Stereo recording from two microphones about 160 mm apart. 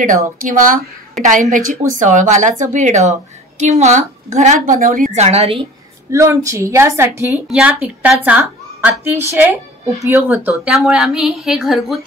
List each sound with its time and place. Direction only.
0.4 s a woman's voice: 55° right (ahead or behind); by 5.7 s 40° right (ahead or behind)
6.1 s a woman's voice: 15° right (ahead or behind); by 12.0 s centre (ahead or behind)